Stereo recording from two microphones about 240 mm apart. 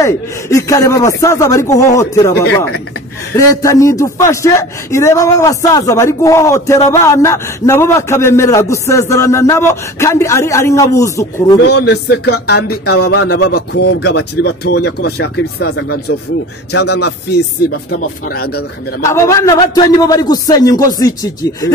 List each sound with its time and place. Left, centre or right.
0.0 s a man's voice: centre
3.3 s a man's voice: centre
11.8 s speech: left
19.0 s a man's voice: centre